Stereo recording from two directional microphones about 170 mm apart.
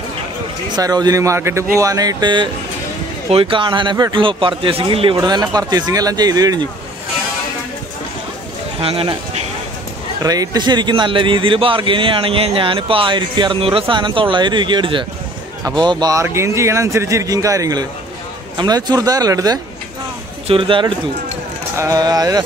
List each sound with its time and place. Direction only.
0.7 s a man's voice: 20° right (ahead or behind)
8.8 s speech: 35° right (ahead or behind)
10.2 s a man's voice: 20° right (ahead or behind)
21.7 s a man's voice: 20° right (ahead or behind)